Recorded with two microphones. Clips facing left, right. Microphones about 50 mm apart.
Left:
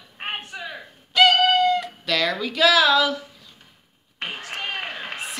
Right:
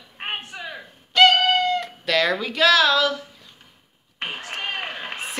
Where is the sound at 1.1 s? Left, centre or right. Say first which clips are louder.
Even; centre.